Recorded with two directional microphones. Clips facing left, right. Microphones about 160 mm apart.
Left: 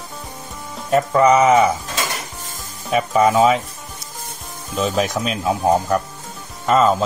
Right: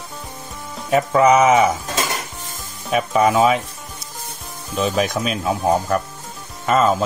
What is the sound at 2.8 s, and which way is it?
Speech, centre (ahead or behind).